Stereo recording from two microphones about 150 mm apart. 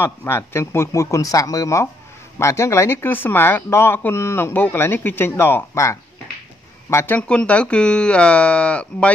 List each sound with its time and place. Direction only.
0.0 s speech: 15° left (ahead or behind)